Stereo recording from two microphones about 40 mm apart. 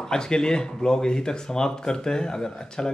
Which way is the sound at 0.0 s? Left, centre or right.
Centre.